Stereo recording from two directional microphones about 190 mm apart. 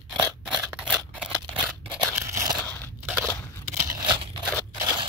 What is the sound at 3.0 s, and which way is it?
Crunch, centre (ahead or behind).